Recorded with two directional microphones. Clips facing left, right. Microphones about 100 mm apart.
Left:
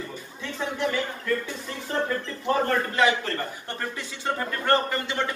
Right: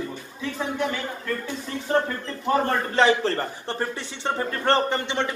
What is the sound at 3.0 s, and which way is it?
A man's voice, 30° right (ahead or behind).